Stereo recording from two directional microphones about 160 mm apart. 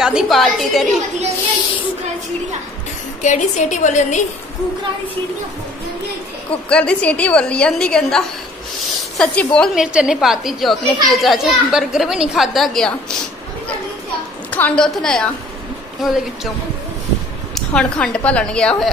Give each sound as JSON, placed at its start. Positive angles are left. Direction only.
{"t": 0.0, "sound": "a child's voice", "side_deg": 0}
{"t": 3.2, "sound": "a woman's voice", "side_deg": 50}
{"t": 6.5, "sound": "a woman's voice", "side_deg": 5}
{"t": 14.5, "sound": "a child's voice", "side_deg": 5}
{"t": 17.6, "sound": "a woman's voice", "side_deg": 5}